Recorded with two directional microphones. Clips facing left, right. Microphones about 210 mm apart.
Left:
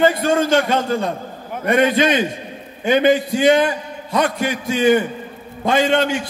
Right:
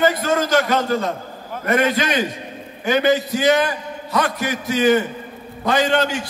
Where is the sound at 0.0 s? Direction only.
25° left (ahead or behind).